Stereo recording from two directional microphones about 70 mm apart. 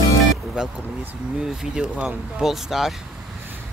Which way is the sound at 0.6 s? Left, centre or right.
Centre.